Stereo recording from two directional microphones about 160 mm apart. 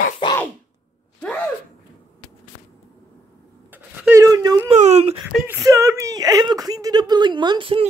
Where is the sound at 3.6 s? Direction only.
15° right (ahead or behind).